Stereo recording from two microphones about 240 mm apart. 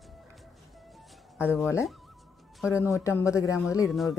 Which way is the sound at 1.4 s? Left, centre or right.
Centre.